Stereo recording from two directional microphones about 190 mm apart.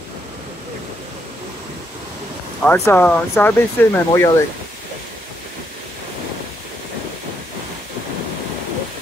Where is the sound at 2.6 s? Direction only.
10° left (ahead or behind).